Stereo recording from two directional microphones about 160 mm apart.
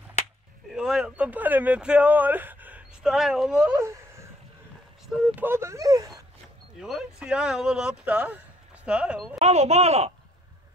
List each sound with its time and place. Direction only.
0.7 s speech: 5° right (ahead or behind)
3.8 s a sound: 20° right (ahead or behind)
5.0 s speech: 10° right (ahead or behind)
6.8 s speech: 5° right (ahead or behind)
9.4 s speech: 40° right (ahead or behind)